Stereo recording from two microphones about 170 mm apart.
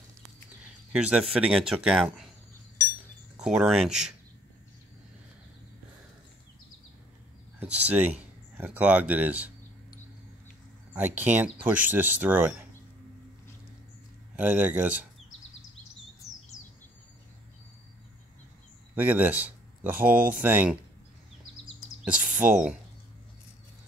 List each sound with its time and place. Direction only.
0.9 s speech: 5° right (ahead or behind)
3.3 s speech: 5° right (ahead or behind)
7.5 s speech: 10° right (ahead or behind)
10.9 s speech: 10° right (ahead or behind)
14.3 s speech: 10° right (ahead or behind)
16.2 s chirp: centre (ahead or behind)
18.9 s speech: 10° right (ahead or behind)
22.0 s speech: 5° right (ahead or behind)